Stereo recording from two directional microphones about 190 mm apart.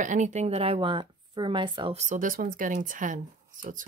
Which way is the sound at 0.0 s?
40° right (ahead or behind).